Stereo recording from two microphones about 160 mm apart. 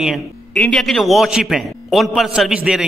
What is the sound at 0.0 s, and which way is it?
A man's voice, centre (ahead or behind).